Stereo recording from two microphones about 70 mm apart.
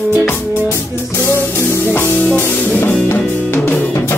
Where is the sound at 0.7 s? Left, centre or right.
Left.